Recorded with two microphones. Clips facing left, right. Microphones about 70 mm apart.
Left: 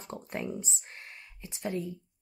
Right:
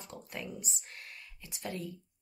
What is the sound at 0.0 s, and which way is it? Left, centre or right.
Speech, left.